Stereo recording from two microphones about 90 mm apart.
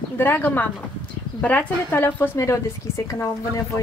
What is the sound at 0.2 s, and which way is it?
A woman's voice, 20° left (ahead or behind).